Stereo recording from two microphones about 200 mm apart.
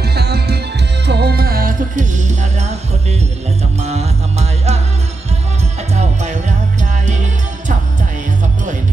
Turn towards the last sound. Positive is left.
turn(degrees=-35)  # may be behind; listen again after turning